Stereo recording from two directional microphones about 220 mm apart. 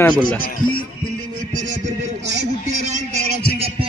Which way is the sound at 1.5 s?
35° right (ahead or behind).